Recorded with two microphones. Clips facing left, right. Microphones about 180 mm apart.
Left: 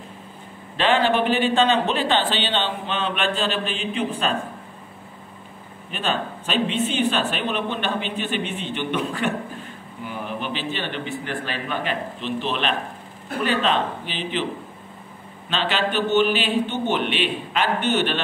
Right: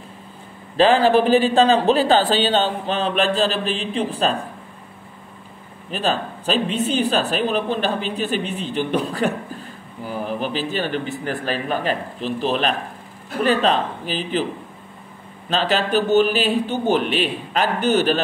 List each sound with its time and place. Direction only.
0.7 s speech: 35° right (ahead or behind)
5.9 s speech: 35° right (ahead or behind)
15.5 s speech: 40° right (ahead or behind)